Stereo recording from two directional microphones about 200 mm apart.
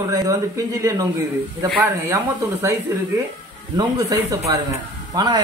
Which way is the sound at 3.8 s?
15° right (ahead or behind).